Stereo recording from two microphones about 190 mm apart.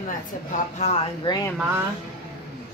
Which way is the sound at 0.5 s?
35° left (ahead or behind).